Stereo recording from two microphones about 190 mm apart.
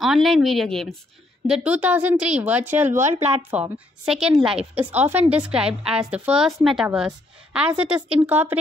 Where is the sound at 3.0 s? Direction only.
35° right (ahead or behind).